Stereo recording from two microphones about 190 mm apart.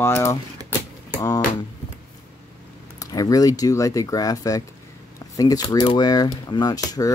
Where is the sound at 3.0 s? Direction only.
20° left (ahead or behind).